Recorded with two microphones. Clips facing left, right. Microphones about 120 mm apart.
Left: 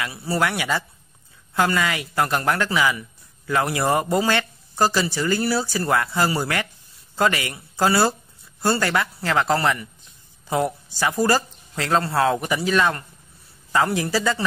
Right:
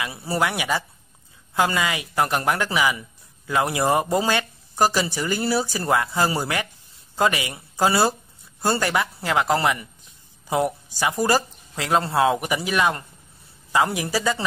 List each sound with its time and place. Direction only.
0.0 s speech: 20° right (ahead or behind)